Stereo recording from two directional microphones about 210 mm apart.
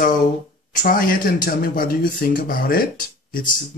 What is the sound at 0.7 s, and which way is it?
Speech, 40° left (ahead or behind).